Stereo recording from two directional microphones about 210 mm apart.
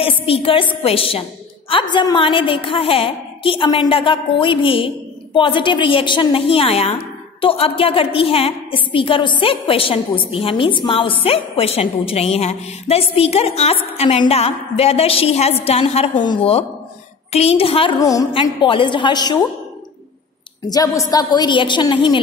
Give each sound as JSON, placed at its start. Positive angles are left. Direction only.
{"t": 0.0, "sound": "a woman's voice", "side_deg": 25}
{"t": 20.7, "sound": "a woman's voice", "side_deg": 15}